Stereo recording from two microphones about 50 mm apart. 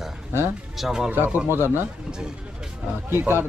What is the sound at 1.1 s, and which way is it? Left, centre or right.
Speech, right.